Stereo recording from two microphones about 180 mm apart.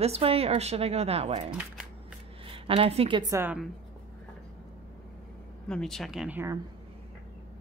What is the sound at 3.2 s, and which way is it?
Speech, 15° right (ahead or behind).